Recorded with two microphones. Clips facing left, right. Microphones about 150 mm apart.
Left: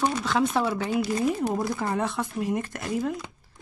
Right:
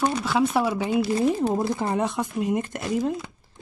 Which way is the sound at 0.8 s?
20° right (ahead or behind).